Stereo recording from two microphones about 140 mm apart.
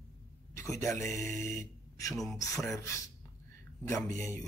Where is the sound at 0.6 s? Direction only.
20° left (ahead or behind).